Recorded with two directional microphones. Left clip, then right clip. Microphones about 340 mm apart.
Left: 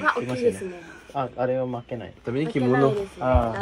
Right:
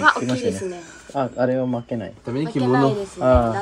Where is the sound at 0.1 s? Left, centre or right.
Right.